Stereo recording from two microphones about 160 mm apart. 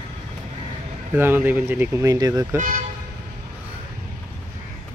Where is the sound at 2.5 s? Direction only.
55° right (ahead or behind).